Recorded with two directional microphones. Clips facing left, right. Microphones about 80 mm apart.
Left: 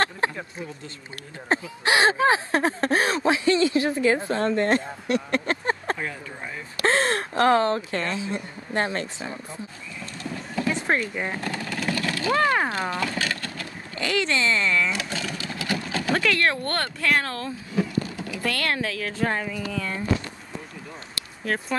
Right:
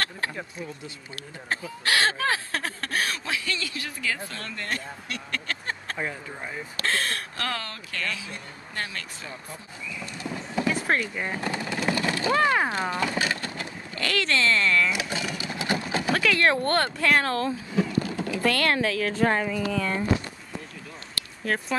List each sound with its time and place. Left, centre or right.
0.2 s speech: left
1.5 s speech: left
10.3 s a sound: centre
11.1 s speech: centre
11.4 s vehicle: centre
12.4 s speech: centre
12.9 s a sound: centre
13.9 s speech: centre
14.9 s sewing machine: centre
16.1 s speech: centre
18.4 s speech: right